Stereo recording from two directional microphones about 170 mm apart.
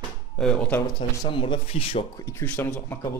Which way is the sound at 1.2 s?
30° left (ahead or behind).